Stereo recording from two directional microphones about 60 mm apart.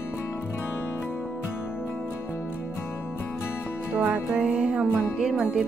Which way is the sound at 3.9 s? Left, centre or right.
Right.